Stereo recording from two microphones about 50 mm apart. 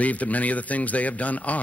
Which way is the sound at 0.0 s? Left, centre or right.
Left.